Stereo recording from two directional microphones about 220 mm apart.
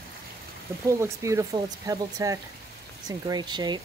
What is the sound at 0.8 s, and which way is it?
Speech, 15° right (ahead or behind).